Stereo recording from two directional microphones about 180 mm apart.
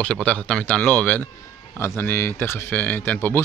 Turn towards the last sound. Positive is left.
turn(degrees=10)  # may be behind; listen again after turning